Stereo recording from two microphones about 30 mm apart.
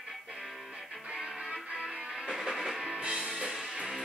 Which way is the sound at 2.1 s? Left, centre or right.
Centre.